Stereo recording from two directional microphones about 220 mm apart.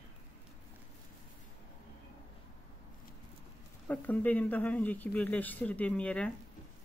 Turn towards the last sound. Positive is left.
turn(degrees=5)  # may be behind; listen again after turning